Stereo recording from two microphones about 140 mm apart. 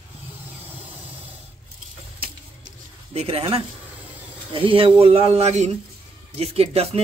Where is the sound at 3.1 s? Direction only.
45° right (ahead or behind).